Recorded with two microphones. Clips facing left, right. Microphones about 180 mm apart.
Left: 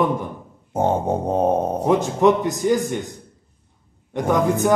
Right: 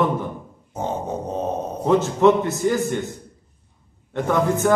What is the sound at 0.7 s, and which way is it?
Grunt, 55° left (ahead or behind).